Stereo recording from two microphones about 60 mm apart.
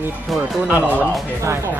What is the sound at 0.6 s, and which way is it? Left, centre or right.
Speech, right.